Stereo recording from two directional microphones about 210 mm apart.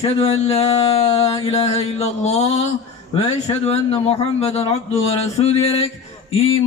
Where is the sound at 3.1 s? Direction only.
30° left (ahead or behind).